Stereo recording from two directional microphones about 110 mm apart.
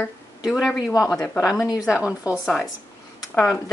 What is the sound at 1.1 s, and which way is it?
Speech, 10° left (ahead or behind).